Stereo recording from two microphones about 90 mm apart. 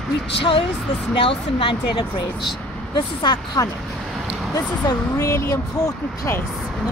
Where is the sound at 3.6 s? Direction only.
40° left (ahead or behind).